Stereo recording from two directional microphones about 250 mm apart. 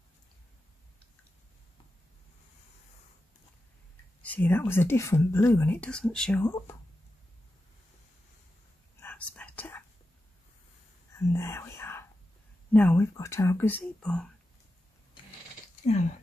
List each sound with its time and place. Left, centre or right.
4.2 s speech: centre
9.0 s whispering: centre
11.1 s whispering: centre
12.7 s speech: centre
15.8 s speech: left